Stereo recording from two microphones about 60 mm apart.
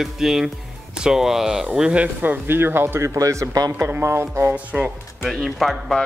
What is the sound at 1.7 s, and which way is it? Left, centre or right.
Speech, centre.